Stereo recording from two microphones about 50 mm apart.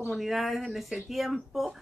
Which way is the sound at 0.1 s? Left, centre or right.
Centre.